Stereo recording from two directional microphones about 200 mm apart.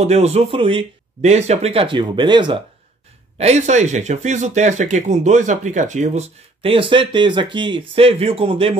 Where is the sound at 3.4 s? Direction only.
35° right (ahead or behind).